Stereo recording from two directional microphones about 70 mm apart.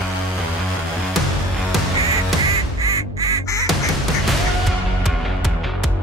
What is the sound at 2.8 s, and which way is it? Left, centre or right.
Quack, right.